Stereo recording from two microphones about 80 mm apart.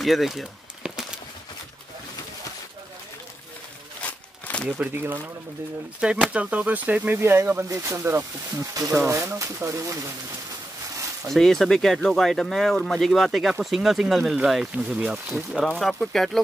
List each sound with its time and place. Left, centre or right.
0.0 s a sound: centre
4.0 s a sound: centre
4.9 s speech: right
5.9 s speech: centre
7.2 s speech: right
11.2 s speech: centre